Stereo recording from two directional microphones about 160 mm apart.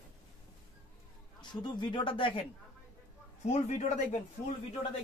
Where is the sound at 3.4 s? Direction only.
45° left (ahead or behind).